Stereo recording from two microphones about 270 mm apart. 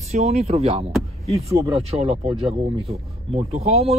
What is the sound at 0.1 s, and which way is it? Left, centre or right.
Speech, right.